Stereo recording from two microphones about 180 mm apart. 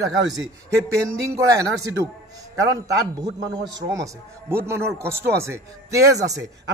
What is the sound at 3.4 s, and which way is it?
A man's voice, 20° right (ahead or behind).